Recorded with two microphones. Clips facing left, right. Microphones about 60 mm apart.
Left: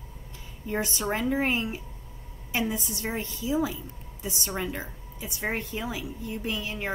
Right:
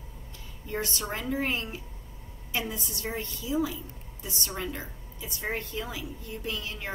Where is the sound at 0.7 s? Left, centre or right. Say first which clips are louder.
Left 4 dB; left.